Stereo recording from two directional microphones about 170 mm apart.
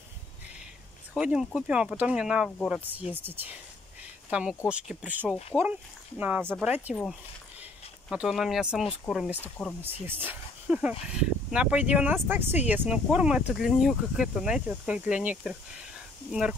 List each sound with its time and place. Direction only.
1.1 s speech: 5° right (ahead or behind)
8.1 s speech: 5° right (ahead or behind)
9.4 s speech: 10° left (ahead or behind)
10.0 s speech: 10° right (ahead or behind)